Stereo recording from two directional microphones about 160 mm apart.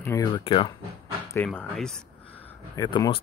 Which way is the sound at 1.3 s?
10° left (ahead or behind).